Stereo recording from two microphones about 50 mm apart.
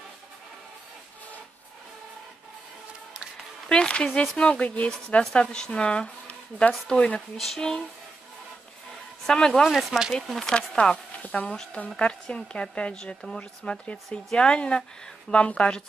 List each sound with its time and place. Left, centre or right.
3.6 s a woman's voice: centre
7.2 s a woman's voice: centre
9.2 s a woman's voice: centre
9.5 s speech: centre
10.8 s a woman's voice: left
13.4 s a woman's voice: left